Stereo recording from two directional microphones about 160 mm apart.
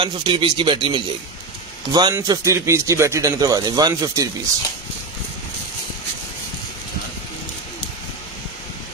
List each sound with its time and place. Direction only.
0.0 s speech: 30° right (ahead or behind)